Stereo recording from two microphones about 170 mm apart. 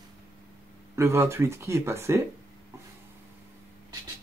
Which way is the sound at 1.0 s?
15° right (ahead or behind).